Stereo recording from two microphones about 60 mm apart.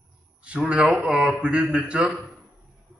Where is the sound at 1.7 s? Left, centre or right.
Right.